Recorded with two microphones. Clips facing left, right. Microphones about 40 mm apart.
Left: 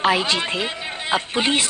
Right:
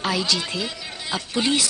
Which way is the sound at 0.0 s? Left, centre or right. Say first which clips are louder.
Left 5 dB; left.